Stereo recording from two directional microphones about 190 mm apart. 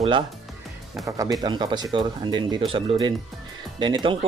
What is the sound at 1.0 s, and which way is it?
Speech, 20° right (ahead or behind).